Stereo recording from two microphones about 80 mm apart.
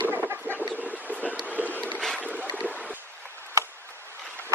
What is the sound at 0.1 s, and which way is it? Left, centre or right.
Chicken, right.